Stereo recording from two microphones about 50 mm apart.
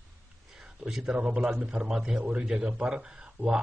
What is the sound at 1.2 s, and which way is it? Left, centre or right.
Speech, centre.